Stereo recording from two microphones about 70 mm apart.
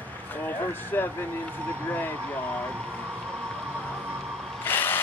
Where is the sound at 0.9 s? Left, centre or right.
Left.